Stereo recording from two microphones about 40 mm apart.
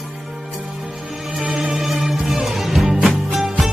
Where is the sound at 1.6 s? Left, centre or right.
Centre.